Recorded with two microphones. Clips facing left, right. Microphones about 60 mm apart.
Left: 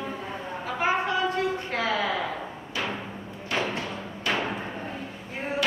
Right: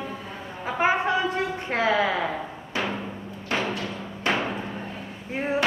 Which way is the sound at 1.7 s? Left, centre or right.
Right.